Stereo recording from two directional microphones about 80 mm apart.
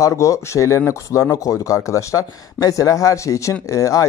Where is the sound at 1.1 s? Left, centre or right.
Left.